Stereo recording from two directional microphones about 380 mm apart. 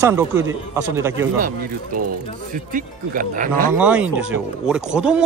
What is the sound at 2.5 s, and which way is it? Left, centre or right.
Speech, right.